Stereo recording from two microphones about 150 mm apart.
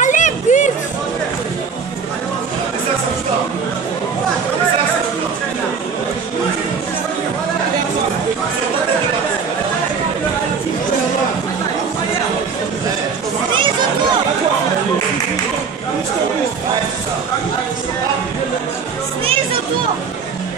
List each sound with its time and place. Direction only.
0.0 s music: 55° left (ahead or behind)